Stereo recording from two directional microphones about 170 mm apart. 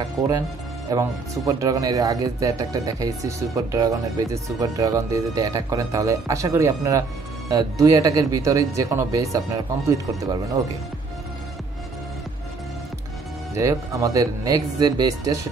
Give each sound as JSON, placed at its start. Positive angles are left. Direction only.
{"t": 0.8, "sound": "speech", "side_deg": -20}
{"t": 13.6, "sound": "speech", "side_deg": -20}